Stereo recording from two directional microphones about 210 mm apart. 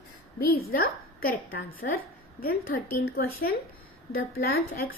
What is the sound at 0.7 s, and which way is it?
A woman's voice, 45° left (ahead or behind).